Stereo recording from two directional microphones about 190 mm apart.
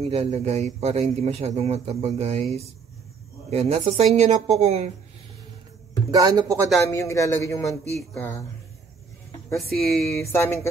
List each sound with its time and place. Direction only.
0.1 s speech: 35° right (ahead or behind)
3.4 s speech: 35° right (ahead or behind)
6.1 s speech: 20° right (ahead or behind)
6.9 s speech: 15° left (ahead or behind)
9.5 s speech: centre (ahead or behind)
10.1 s speech: 15° left (ahead or behind)